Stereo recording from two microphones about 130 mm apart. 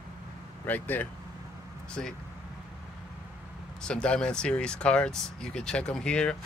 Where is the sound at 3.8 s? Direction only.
5° left (ahead or behind).